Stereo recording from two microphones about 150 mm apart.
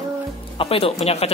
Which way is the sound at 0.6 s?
40° left (ahead or behind).